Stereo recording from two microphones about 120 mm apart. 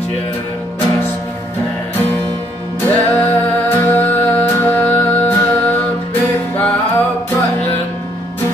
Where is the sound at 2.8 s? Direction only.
15° left (ahead or behind).